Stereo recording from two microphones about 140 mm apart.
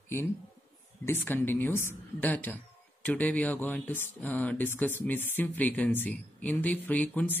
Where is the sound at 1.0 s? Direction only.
15° left (ahead or behind).